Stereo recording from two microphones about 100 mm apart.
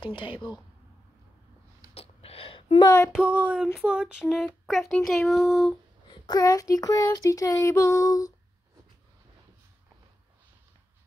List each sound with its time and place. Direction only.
0.0 s speech: 55° left (ahead or behind)
2.0 s gasp: 80° left
3.1 s a sound: 10° right (ahead or behind)
6.2 s child singing: 35° left (ahead or behind)